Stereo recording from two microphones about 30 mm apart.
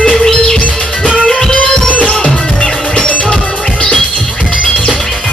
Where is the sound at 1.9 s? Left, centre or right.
Left.